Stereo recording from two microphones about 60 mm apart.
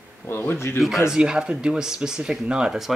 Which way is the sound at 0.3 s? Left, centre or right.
Left.